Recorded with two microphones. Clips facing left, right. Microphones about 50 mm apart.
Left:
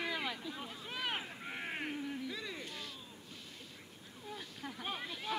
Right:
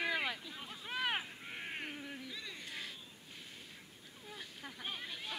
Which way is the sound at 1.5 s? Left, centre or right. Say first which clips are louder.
Left 3 dB; centre.